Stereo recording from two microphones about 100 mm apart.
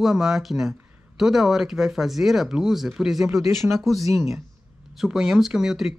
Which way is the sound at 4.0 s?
30° right (ahead or behind).